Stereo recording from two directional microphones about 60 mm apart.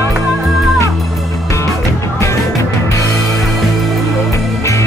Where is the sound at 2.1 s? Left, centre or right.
Left.